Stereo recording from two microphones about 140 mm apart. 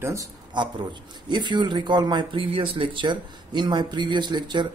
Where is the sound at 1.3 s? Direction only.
35° right (ahead or behind).